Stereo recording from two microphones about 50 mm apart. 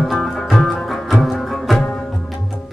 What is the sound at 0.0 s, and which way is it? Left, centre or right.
Music, centre.